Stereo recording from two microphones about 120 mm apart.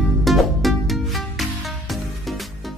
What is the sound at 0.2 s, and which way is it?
Music, centre (ahead or behind).